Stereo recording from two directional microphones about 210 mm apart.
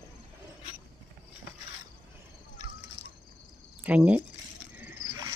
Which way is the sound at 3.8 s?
5° right (ahead or behind).